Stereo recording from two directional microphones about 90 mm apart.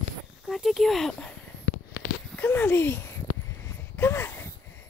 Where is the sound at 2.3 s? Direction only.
20° left (ahead or behind).